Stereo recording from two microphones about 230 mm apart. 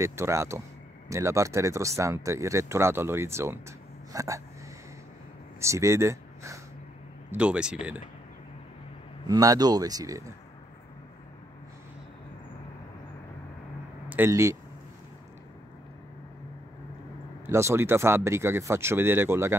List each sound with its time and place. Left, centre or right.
0.0 s speech: centre
4.1 s a sound: centre
5.6 s speech: centre
9.3 s speech: centre
14.0 s speech: centre
17.5 s speech: centre